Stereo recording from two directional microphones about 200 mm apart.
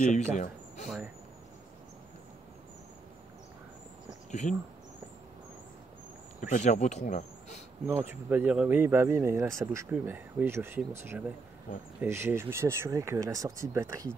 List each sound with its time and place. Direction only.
0.0 s speech: 40° left (ahead or behind)
4.3 s speech: 35° left (ahead or behind)
6.4 s speech: 40° left (ahead or behind)
7.8 s speech: 10° right (ahead or behind)